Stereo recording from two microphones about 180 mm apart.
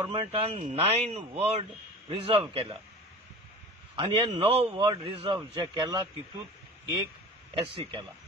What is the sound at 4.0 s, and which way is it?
Speech, 30° right (ahead or behind).